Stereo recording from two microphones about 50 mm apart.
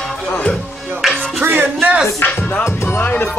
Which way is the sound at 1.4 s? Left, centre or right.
Right.